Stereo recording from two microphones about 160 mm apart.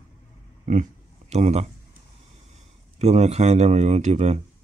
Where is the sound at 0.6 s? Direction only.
50° right (ahead or behind).